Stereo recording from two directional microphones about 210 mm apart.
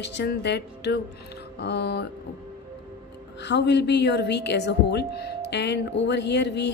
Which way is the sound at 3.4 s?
55° left (ahead or behind).